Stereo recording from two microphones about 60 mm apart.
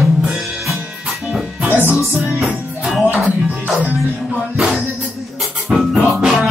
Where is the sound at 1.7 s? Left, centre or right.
Right.